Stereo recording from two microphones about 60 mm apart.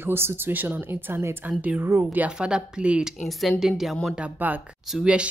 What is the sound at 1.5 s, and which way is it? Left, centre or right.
Speech, right.